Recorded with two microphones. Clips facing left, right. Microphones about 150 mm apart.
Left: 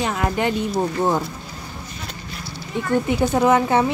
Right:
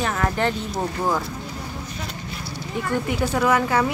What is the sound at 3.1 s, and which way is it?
Speech, 25° left (ahead or behind).